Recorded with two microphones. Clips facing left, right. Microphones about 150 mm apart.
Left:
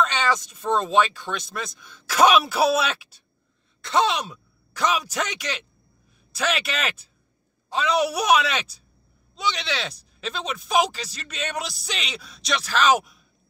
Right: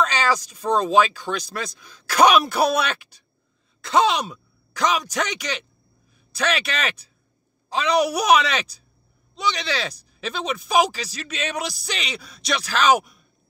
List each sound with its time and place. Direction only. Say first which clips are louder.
0.0 s speech: right 1 dB; centre (ahead or behind)